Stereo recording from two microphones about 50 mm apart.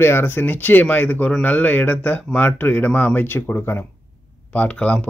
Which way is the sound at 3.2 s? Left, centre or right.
Left.